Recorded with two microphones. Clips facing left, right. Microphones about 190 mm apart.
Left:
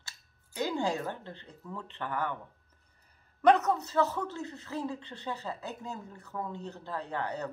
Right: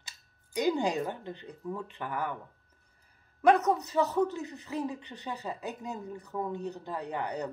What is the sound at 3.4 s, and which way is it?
Speech, 10° right (ahead or behind).